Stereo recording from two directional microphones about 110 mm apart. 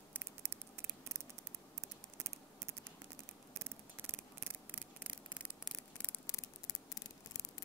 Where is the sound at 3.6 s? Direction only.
20° right (ahead or behind).